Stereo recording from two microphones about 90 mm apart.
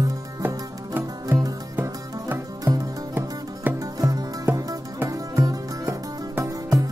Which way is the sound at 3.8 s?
40° right (ahead or behind).